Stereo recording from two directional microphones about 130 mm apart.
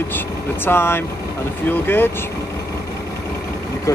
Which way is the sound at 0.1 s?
15° left (ahead or behind).